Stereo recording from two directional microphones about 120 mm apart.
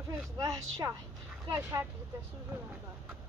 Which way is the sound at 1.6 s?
25° right (ahead or behind).